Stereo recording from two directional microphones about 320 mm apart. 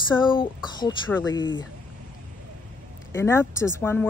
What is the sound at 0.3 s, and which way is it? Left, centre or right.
Speech, centre.